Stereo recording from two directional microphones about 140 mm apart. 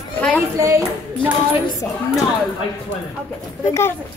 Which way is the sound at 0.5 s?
25° right (ahead or behind).